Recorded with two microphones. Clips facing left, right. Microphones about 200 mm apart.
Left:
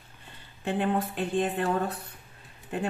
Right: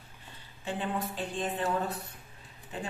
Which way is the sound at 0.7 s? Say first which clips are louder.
Left 6 dB; 60° left (ahead or behind).